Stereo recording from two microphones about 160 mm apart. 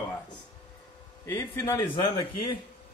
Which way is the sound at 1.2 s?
15° left (ahead or behind).